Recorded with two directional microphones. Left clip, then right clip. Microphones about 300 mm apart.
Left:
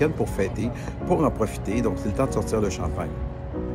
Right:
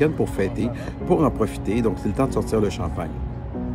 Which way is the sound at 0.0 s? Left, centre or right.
Centre.